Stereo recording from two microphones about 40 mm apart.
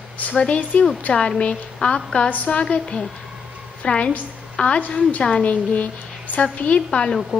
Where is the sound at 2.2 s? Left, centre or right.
Left.